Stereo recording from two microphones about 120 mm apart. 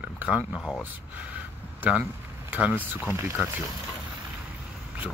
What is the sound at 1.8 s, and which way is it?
Speech, 10° right (ahead or behind).